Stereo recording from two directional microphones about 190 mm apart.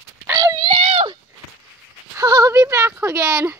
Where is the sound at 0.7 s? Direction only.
35° right (ahead or behind).